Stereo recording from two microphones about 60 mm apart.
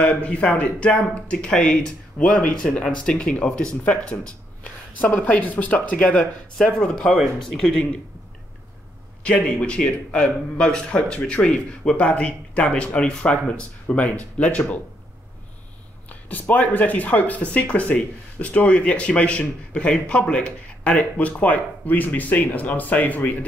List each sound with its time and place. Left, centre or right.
0.0 s speech: left; by 7.8 s centre
9.2 s speech: centre
16.1 s speech: left